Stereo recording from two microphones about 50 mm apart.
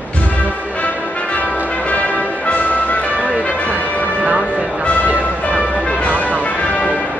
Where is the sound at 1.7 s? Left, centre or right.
Left.